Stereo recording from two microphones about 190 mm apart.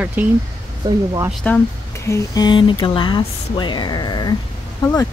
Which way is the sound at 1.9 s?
15° left (ahead or behind).